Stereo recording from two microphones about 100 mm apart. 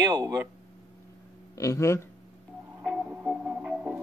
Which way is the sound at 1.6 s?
30° left (ahead or behind).